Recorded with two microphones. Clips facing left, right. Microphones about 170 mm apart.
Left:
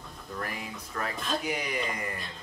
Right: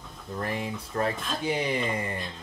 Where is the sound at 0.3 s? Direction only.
25° right (ahead or behind).